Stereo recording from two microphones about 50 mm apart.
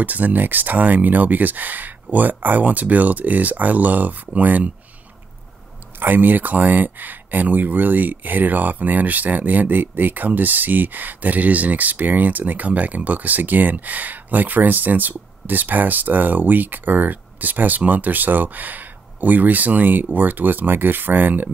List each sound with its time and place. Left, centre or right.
0.0 s speech: right
5.9 s speech: right